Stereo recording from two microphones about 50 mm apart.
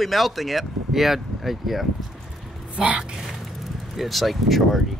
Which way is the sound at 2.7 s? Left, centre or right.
Right.